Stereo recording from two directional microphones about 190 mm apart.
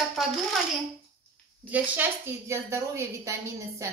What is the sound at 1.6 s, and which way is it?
A woman's voice, 10° right (ahead or behind).